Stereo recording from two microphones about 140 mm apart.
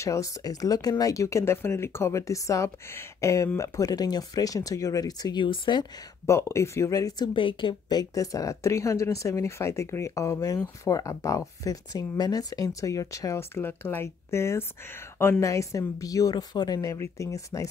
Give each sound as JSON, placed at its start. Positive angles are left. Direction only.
{"t": 0.0, "sound": "speech", "side_deg": 25}
{"t": 6.2, "sound": "speech", "side_deg": 20}
{"t": 7.3, "sound": "speech", "side_deg": 35}